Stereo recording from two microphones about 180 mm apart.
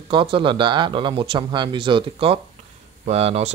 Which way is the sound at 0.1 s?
30° right (ahead or behind).